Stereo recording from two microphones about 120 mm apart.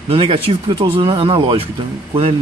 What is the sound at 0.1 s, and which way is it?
Speech, 50° right (ahead or behind).